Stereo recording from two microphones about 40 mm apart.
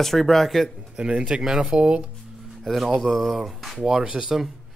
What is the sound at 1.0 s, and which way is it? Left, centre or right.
Speech, right.